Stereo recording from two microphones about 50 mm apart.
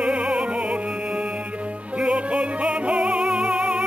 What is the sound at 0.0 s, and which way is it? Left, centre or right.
Music, centre.